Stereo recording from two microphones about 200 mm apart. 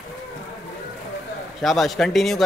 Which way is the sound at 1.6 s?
Centre (ahead or behind).